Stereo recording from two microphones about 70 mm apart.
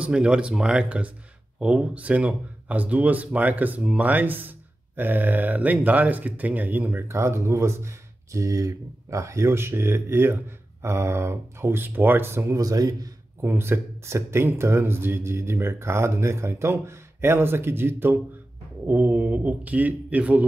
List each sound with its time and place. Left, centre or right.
0.0 s speech: centre
7.1 s speech: right
12.5 s speech: right
13.4 s speech: right
18.9 s speech: right